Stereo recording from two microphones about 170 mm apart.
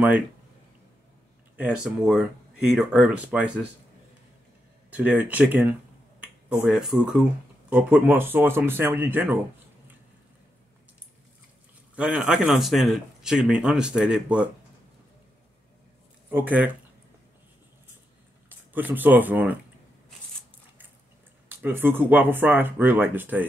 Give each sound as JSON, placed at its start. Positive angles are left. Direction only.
{"t": 1.6, "sound": "speech", "side_deg": -5}
{"t": 4.9, "sound": "speech", "side_deg": -10}
{"t": 11.9, "sound": "speech", "side_deg": -5}
{"t": 16.3, "sound": "speech", "side_deg": -10}
{"t": 18.5, "sound": "speech", "side_deg": -10}
{"t": 21.5, "sound": "speech", "side_deg": -10}